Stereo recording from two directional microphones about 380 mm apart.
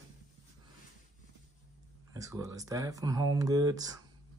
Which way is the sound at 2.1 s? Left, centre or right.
Centre.